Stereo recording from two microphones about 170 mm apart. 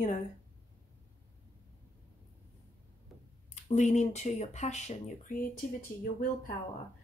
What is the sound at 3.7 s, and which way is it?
Speech, 45° left (ahead or behind).